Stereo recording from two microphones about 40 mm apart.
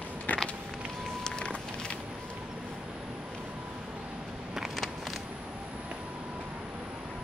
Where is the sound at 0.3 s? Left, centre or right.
Left.